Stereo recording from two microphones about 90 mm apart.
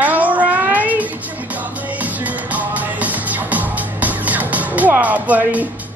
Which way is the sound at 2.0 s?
15° right (ahead or behind).